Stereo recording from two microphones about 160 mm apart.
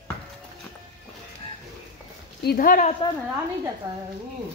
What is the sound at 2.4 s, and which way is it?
Speech, 70° left (ahead or behind).